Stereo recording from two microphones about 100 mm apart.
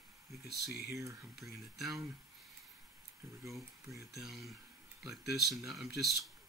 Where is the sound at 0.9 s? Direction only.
30° right (ahead or behind).